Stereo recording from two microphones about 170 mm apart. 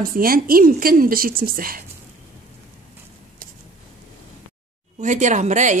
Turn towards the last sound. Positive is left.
turn(degrees=-45)  # may be behind; listen again after turning